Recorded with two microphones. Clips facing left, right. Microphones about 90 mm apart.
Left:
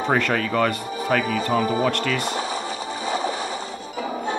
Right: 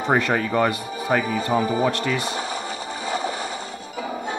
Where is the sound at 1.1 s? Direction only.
30° right (ahead or behind).